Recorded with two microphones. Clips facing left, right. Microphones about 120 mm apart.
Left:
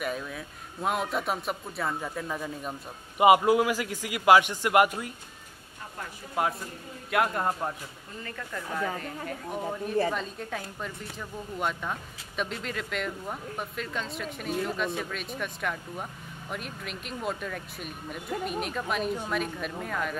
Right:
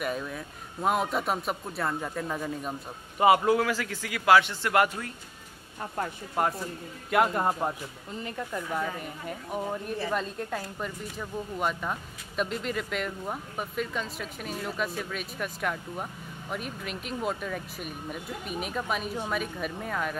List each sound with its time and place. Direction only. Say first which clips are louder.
0.0 s speech: right 1 dB; centre (ahead or behind)
3.2 s a man's voice: left 2 dB; 15° left (ahead or behind)
6.4 s speech: right 1 dB; 5° left (ahead or behind)
8.2 s speech: right 4 dB; 20° right (ahead or behind)
10.1 s speech: right 3 dB; 5° right (ahead or behind)